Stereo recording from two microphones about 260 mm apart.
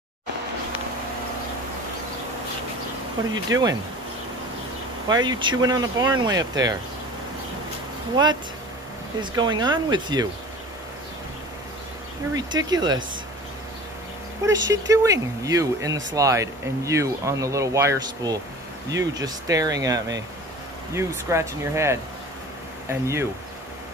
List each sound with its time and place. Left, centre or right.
3.4 s speech: centre
5.0 s speech: centre
8.2 s speech: centre
12.4 s speech: centre
14.4 s speech: centre